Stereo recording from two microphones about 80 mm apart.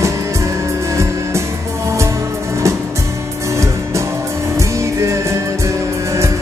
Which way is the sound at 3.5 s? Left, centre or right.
Right.